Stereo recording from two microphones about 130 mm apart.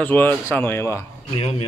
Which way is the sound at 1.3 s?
50° left (ahead or behind).